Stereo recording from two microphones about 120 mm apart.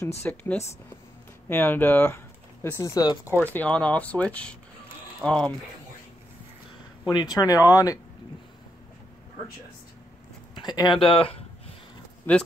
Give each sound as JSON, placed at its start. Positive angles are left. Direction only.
{"t": 0.3, "sound": "speech", "side_deg": 10}
{"t": 3.5, "sound": "speech", "side_deg": 10}
{"t": 7.1, "sound": "speech", "side_deg": 35}
{"t": 10.5, "sound": "speech", "side_deg": 35}
{"t": 12.3, "sound": "speech", "side_deg": 15}